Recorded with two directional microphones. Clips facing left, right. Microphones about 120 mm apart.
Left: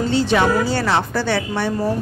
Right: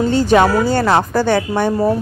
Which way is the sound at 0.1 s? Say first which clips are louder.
Right 4 dB; 45° right (ahead or behind).